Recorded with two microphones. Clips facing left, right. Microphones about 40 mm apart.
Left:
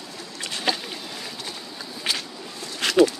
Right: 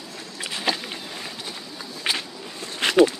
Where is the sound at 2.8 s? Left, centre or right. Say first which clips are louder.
Right 1 dB; right.